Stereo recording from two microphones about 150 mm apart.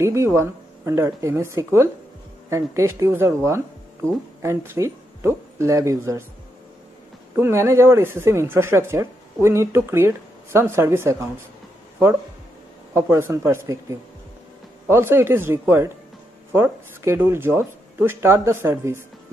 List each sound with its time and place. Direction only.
0.0 s speech: 20° right (ahead or behind)
7.3 s speech: 15° right (ahead or behind)
12.9 s speech: 15° right (ahead or behind)